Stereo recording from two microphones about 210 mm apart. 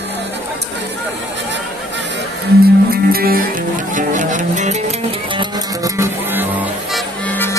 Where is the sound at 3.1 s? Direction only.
45° right (ahead or behind).